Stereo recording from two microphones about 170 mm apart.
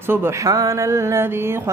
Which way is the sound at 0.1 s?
15° right (ahead or behind).